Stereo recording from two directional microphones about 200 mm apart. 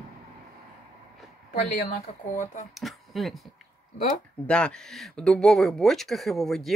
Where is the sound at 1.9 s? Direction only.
40° left (ahead or behind).